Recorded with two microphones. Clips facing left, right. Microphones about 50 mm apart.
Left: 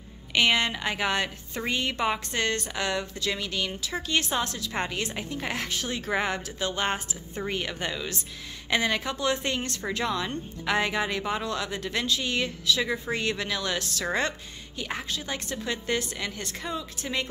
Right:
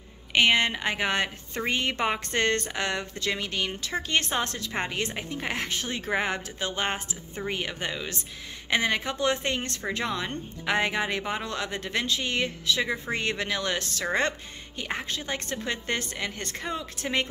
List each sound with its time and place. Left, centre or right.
0.3 s a woman's voice: right
4.7 s a woman's voice: right
13.2 s a woman's voice: right
15.0 s a woman's voice: right